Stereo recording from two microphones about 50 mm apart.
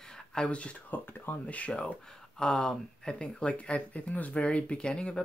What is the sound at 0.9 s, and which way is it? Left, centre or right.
Speech, left.